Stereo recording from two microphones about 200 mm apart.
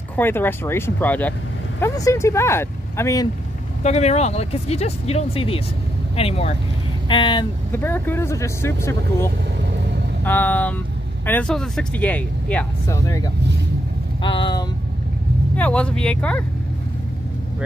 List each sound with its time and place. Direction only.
0.1 s speech: 10° left (ahead or behind)
3.8 s speech: 35° left (ahead or behind)
7.7 s speech: 10° left (ahead or behind)
15.5 s speech: 5° left (ahead or behind)